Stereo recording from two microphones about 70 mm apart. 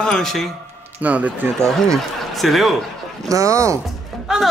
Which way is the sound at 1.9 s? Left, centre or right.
Centre.